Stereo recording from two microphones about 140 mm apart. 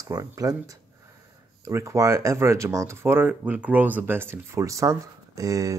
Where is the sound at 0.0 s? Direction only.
25° right (ahead or behind).